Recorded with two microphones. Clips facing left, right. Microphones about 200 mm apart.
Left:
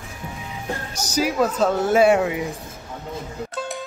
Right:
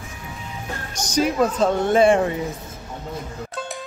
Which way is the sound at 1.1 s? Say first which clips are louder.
Right 1 dB; 5° left (ahead or behind).